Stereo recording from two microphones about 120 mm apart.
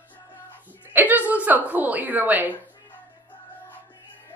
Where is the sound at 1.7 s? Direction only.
15° right (ahead or behind).